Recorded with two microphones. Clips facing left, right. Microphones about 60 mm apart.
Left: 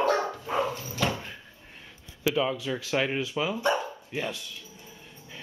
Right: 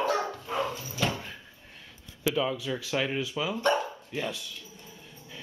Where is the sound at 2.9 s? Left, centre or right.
Centre.